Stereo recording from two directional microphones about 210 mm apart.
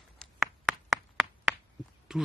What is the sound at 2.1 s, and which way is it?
Speech, 5° right (ahead or behind).